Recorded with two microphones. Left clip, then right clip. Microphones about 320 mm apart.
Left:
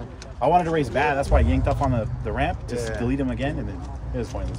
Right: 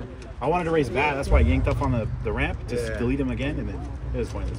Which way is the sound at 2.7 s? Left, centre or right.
Left.